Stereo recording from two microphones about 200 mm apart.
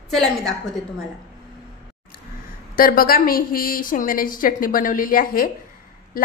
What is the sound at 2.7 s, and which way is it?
A woman's voice, 45° left (ahead or behind).